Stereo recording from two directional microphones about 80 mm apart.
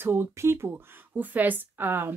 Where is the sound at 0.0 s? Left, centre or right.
Right.